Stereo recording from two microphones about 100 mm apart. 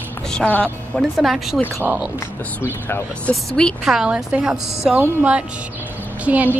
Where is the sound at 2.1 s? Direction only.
25° left (ahead or behind).